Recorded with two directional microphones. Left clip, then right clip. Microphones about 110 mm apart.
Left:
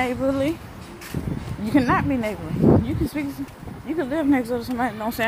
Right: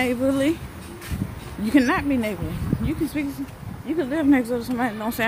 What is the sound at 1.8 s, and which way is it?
Speech, 35° right (ahead or behind).